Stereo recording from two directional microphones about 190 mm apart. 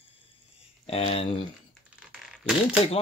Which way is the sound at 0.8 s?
30° left (ahead or behind).